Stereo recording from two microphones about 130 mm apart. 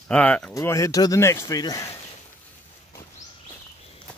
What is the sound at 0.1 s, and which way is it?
Speech, 10° left (ahead or behind).